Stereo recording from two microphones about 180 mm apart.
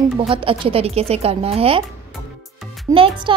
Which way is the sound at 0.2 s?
30° right (ahead or behind).